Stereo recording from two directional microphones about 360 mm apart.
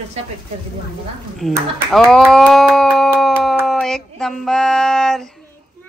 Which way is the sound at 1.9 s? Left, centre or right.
Centre.